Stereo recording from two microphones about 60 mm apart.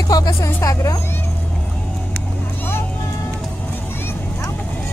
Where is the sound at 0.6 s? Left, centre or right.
Left.